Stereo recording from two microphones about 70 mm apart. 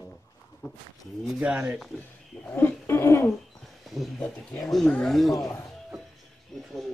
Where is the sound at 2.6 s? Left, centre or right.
Left.